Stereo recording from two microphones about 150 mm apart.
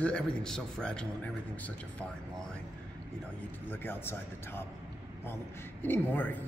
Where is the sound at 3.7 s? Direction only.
15° left (ahead or behind).